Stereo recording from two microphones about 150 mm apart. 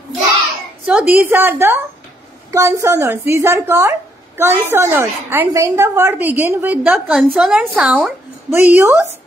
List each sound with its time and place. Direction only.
0.8 s a woman's voice: 10° right (ahead or behind)
8.5 s a woman's voice: 15° right (ahead or behind)